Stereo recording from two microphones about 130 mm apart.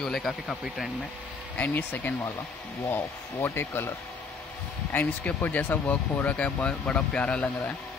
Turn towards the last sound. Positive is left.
turn(degrees=10)  # may be behind; listen again after turning